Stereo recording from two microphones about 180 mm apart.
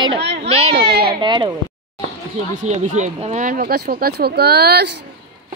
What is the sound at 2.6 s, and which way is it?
Speech, 40° right (ahead or behind).